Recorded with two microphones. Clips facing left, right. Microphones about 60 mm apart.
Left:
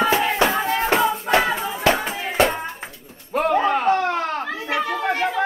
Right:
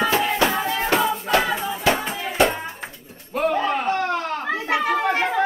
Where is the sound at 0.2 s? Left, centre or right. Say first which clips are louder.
Left 1 dB; left.